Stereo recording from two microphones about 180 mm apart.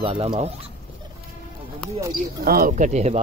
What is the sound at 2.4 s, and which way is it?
Speech, 55° right (ahead or behind).